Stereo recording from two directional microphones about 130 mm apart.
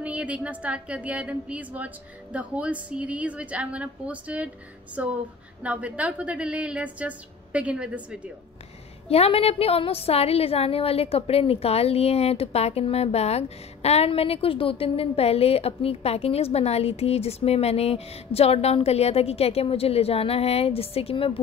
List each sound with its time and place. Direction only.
0.0 s a woman's voice: 10° right (ahead or behind)
9.1 s a woman's voice: 50° left (ahead or behind)